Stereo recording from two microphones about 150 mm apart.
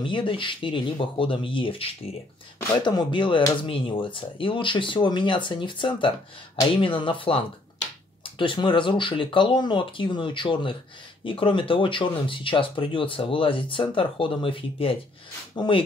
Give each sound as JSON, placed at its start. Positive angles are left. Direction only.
{"t": 0.0, "sound": "speech", "side_deg": 35}